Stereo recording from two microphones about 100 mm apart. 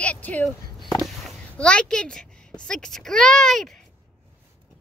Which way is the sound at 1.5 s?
10° left (ahead or behind).